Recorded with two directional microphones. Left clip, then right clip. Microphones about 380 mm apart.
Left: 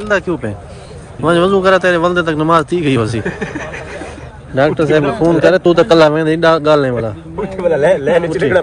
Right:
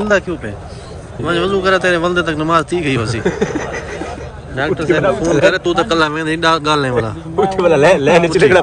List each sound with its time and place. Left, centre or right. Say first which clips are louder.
0.1 s speech: left 4 dB; centre
4.6 s speech: left 4 dB; centre
7.4 s a man's voice: right 2 dB; right